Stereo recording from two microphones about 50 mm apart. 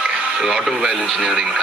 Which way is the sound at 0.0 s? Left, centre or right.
Centre.